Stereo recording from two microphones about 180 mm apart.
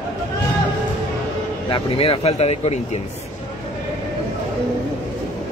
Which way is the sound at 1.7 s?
30° left (ahead or behind).